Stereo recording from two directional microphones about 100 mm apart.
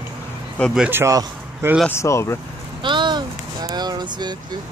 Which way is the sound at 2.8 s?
50° right (ahead or behind).